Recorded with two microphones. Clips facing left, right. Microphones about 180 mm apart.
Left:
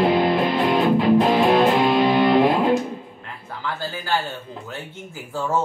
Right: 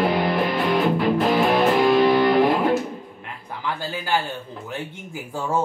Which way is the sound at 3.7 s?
15° right (ahead or behind).